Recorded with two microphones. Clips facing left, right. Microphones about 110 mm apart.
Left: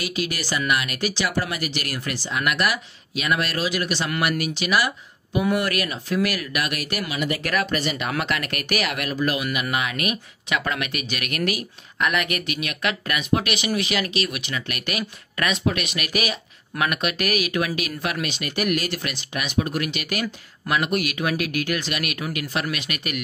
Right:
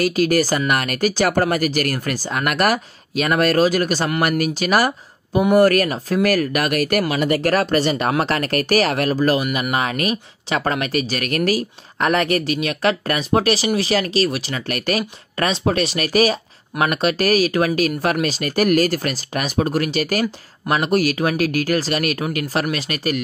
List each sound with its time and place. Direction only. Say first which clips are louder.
0.0 s speech: right 11 dB; 45° right (ahead or behind)